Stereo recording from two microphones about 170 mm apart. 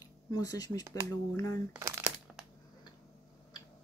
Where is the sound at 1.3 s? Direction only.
20° left (ahead or behind).